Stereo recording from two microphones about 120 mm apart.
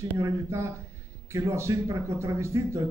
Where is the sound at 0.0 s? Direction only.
25° right (ahead or behind).